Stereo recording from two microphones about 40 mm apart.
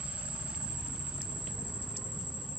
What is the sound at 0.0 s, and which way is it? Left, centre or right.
Vehicle, right.